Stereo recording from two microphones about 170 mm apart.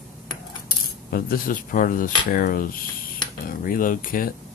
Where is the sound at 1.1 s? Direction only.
60° left (ahead or behind).